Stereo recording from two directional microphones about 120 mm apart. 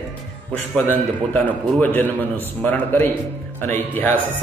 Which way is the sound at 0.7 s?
10° left (ahead or behind).